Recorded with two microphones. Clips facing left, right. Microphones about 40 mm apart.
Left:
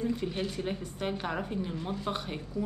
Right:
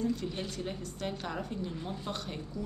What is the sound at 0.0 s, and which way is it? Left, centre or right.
A woman's voice, left.